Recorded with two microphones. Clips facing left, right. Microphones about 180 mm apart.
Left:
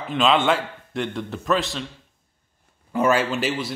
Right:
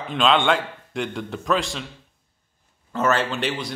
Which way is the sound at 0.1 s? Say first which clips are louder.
Even; 5° left (ahead or behind).